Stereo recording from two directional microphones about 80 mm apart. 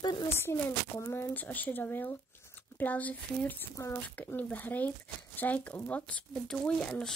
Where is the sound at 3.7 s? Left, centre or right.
Left.